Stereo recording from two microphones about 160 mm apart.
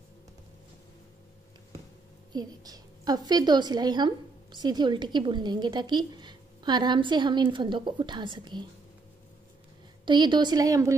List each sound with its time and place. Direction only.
2.3 s a woman's voice: 25° right (ahead or behind)
10.0 s a woman's voice: 30° right (ahead or behind)